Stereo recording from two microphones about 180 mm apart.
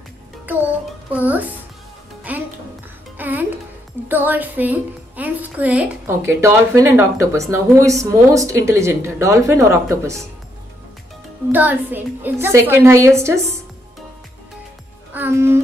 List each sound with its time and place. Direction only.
0.5 s a woman's voice: 10° right (ahead or behind)
2.3 s music: 10° right (ahead or behind)
4.1 s a woman's voice: 10° right (ahead or behind)
11.5 s a woman's voice: 10° right (ahead or behind)
15.1 s music: 10° right (ahead or behind)